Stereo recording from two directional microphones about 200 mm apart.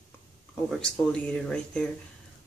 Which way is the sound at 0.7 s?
5° left (ahead or behind).